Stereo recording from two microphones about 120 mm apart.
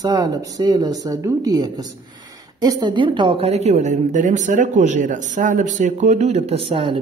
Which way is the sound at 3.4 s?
65° right (ahead or behind).